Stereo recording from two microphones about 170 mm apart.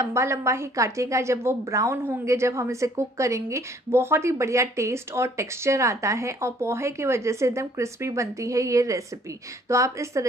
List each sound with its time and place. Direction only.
0.0 s a woman's voice: 15° right (ahead or behind)